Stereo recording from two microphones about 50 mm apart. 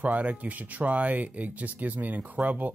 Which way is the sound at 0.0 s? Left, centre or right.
Right.